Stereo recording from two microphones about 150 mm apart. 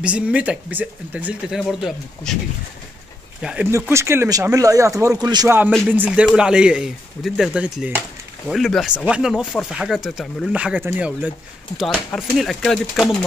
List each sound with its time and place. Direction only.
0.0 s speech: 10° right (ahead or behind)
3.9 s speech: 15° right (ahead or behind)
5.9 s speech: 10° right (ahead or behind)
11.8 s speech: 5° left (ahead or behind)